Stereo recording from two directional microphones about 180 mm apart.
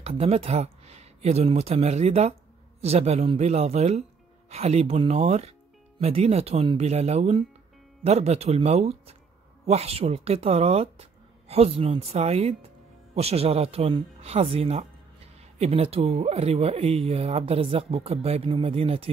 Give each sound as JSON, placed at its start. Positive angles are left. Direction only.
{"t": 0.0, "sound": "speech", "side_deg": -35}